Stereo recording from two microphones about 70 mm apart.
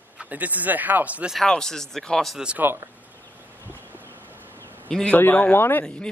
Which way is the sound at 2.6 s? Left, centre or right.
Right.